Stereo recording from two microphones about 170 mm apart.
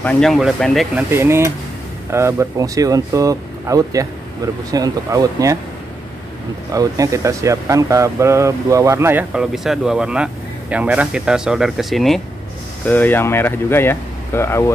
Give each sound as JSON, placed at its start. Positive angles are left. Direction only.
{"t": 0.0, "sound": "speech", "side_deg": 5}
{"t": 0.9, "sound": "speech", "side_deg": -15}
{"t": 6.7, "sound": "speech", "side_deg": -20}